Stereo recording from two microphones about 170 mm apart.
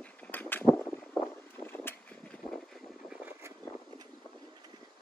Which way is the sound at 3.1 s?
10° right (ahead or behind).